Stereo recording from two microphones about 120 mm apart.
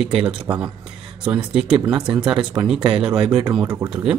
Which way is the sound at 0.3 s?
10° right (ahead or behind).